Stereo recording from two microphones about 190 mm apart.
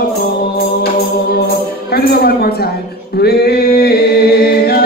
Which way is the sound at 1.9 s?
55° left (ahead or behind).